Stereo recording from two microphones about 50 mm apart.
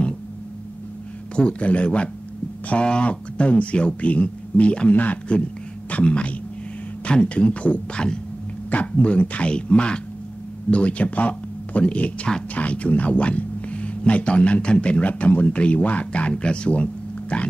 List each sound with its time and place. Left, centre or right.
1.3 s speech: left